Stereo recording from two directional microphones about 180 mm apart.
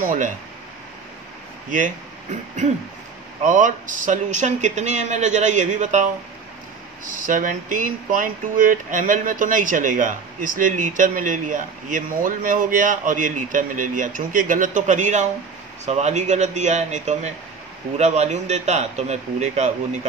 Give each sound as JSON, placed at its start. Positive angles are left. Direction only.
{"t": 0.0, "sound": "speech", "side_deg": -45}
{"t": 2.6, "sound": "speech", "side_deg": -40}
{"t": 7.1, "sound": "speech", "side_deg": -50}